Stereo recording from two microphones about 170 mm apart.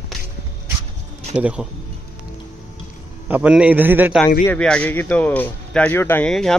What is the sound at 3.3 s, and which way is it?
Speech, 10° right (ahead or behind).